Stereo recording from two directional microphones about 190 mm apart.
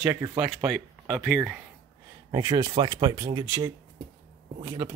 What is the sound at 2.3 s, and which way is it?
Speech, 20° right (ahead or behind).